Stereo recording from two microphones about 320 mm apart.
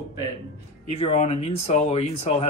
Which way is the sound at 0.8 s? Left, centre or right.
Centre.